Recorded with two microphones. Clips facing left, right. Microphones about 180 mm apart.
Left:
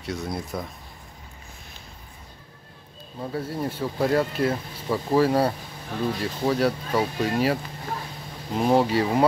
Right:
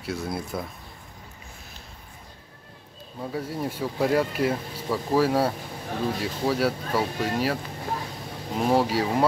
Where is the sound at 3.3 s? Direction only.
10° right (ahead or behind).